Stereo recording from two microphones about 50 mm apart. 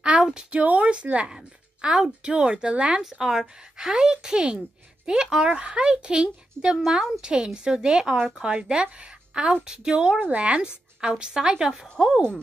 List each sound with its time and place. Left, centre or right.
0.2 s speech: centre
0.6 s a woman's voice: right
3.0 s a woman's voice: centre